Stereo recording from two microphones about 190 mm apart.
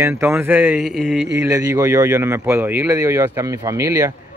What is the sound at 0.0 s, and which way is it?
Speech, 10° right (ahead or behind).